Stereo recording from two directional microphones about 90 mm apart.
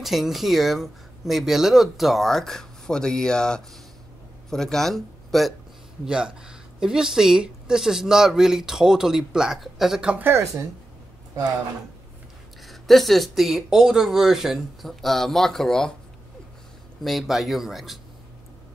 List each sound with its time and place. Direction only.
0.0 s speech: centre (ahead or behind)
6.0 s speech: 10° right (ahead or behind)
10.1 s speech: 25° right (ahead or behind)
12.6 s speech: centre (ahead or behind)
17.0 s speech: centre (ahead or behind)